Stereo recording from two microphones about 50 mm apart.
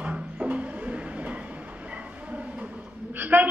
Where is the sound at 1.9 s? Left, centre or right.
Right.